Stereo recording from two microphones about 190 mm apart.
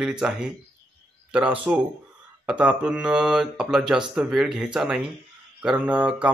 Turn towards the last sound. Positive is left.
turn(degrees=-5)  # may be behind; listen again after turning